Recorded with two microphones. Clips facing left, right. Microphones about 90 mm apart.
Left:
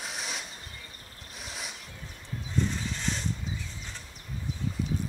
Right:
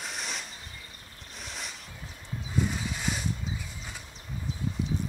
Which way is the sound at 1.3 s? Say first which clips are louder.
Even; 5° left (ahead or behind).